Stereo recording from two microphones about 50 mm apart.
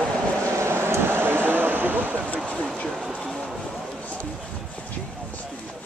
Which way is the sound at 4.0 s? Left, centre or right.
Left.